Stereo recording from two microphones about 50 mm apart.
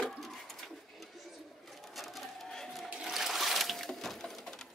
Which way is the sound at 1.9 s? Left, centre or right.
Centre.